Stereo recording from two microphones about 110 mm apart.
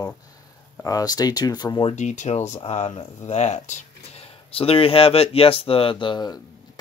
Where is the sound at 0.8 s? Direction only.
35° left (ahead or behind).